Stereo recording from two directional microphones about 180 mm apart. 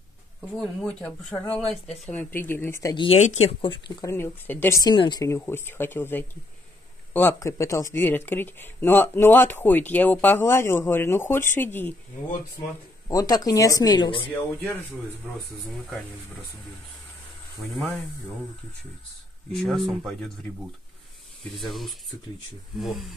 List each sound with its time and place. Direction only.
0.6 s speech: 5° left (ahead or behind); by 3.2 s 25° left (ahead or behind)
3.2 s speech: 35° left (ahead or behind); by 11.9 s 10° left (ahead or behind)
13.1 s speech: 20° left (ahead or behind)
14.3 s speech: 10° left (ahead or behind)
17.6 s speech: centre (ahead or behind)
19.5 s speech: centre (ahead or behind)
21.5 s speech: centre (ahead or behind)